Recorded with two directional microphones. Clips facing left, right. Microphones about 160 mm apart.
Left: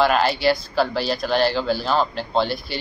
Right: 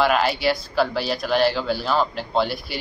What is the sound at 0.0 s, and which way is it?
Speech, 5° right (ahead or behind).